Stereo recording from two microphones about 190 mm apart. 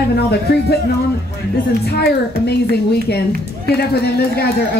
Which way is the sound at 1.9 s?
60° left (ahead or behind).